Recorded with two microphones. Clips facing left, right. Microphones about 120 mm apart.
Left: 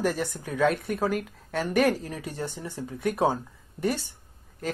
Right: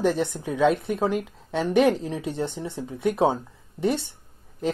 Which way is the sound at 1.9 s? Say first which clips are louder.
Right 5 dB; 25° right (ahead or behind).